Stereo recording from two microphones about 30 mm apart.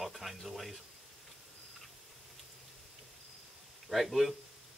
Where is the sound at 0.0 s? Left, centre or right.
Centre.